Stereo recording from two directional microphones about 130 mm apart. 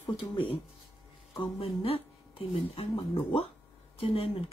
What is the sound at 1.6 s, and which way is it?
Speech, 50° left (ahead or behind).